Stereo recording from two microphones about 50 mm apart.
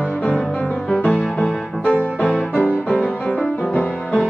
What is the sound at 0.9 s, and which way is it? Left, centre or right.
Music, left.